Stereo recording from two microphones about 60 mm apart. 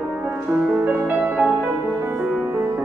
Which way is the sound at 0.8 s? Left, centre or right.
Right.